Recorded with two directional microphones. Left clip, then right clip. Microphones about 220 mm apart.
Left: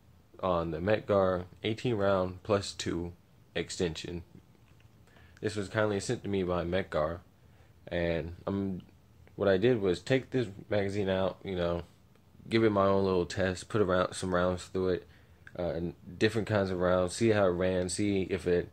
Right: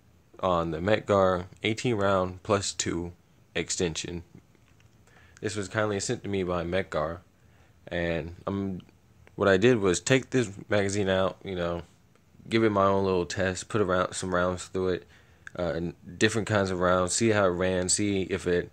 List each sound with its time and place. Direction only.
0.4 s speech: 25° right (ahead or behind)
5.3 s speech: 20° right (ahead or behind)
9.2 s speech: 30° right (ahead or behind)